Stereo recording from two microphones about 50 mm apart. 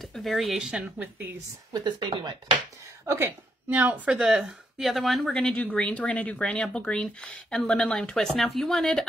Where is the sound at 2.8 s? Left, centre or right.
Right.